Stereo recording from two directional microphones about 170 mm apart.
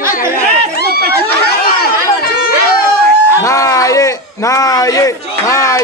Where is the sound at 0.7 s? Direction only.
65° left (ahead or behind).